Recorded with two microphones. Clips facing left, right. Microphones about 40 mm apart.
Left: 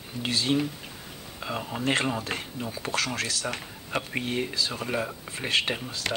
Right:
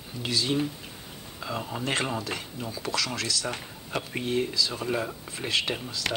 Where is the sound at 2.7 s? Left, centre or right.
Left.